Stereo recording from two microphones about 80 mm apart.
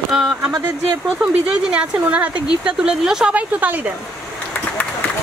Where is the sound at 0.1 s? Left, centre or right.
Centre.